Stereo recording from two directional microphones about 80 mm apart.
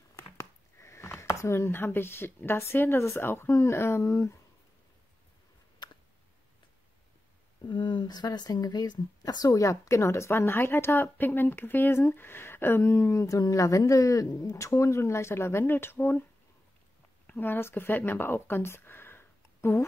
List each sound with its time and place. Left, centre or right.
0.1 s speech: left
5.8 s a sound: left
7.7 s speech: left
14.6 s speech: left
17.3 s speech: left